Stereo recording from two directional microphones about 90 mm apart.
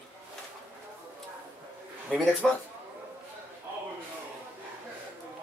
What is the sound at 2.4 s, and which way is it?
Speech, 5° left (ahead or behind).